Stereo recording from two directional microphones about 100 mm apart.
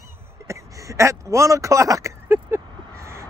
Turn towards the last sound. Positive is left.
turn(degrees=-25)  # may be behind; listen again after turning